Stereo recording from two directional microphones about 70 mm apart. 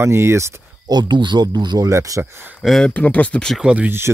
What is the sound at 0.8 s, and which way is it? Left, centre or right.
Speech, right.